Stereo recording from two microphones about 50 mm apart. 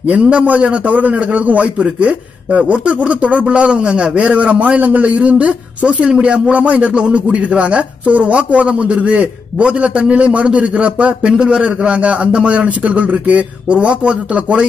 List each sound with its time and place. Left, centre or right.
0.1 s a man's voice: right